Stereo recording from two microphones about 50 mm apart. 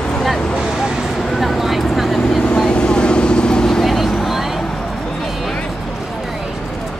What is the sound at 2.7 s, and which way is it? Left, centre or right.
Vehicle, centre.